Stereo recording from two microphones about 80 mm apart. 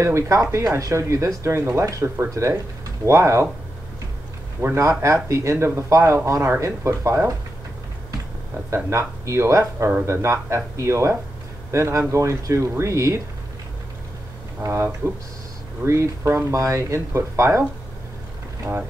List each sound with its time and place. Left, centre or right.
0.0 s speech: right
4.7 s speech: right
8.6 s speech: right
14.7 s speech: right
18.6 s speech: right